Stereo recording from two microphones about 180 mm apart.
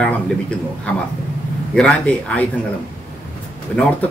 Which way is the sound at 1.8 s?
5° left (ahead or behind).